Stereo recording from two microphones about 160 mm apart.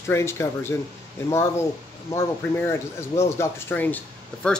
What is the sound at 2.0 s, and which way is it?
Speech, 15° left (ahead or behind).